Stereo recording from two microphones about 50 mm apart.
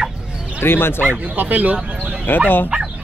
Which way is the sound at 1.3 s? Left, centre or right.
Right.